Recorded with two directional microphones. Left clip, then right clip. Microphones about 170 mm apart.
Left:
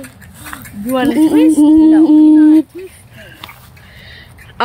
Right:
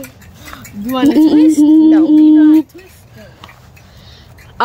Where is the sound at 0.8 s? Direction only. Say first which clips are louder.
Right 2 dB; 15° right (ahead or behind).